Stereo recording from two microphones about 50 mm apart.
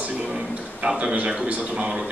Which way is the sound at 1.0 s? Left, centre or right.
Right.